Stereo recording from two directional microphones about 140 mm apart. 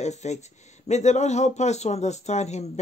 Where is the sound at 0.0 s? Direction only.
55° left (ahead or behind).